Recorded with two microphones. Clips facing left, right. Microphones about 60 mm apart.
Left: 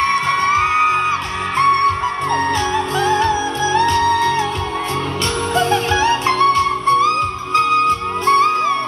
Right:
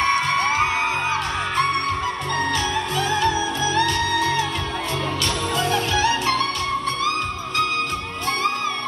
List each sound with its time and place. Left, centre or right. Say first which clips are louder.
0.3 s music: left 4 dB; left
3.0 s music: left 5 dB; left
5.6 s music: left 6 dB; left